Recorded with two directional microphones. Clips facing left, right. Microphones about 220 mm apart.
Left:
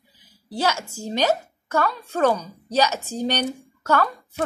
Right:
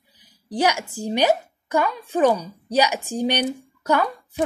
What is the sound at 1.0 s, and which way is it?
A woman's voice, 15° right (ahead or behind).